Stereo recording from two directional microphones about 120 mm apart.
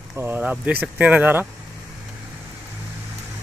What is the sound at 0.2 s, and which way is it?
Speech, 10° right (ahead or behind).